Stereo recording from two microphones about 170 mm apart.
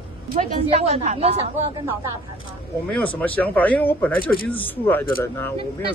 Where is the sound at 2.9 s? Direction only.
10° left (ahead or behind).